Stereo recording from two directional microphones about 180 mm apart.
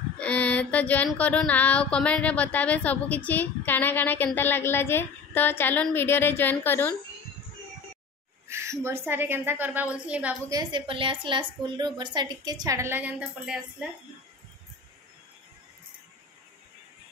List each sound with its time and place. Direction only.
0.2 s female singing: 10° left (ahead or behind)
1.1 s speech: 5° left (ahead or behind)
8.5 s speech: 15° right (ahead or behind)
10.5 s a woman's voice: 25° right (ahead or behind); by 13.8 s 5° right (ahead or behind)